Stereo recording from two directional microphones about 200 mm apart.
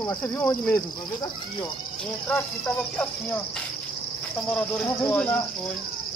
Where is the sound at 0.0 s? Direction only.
10° left (ahead or behind).